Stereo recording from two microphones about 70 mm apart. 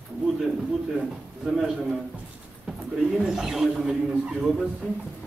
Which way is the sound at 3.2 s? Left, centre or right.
Centre.